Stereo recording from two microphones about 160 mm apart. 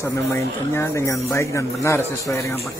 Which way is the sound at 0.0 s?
15° left (ahead or behind).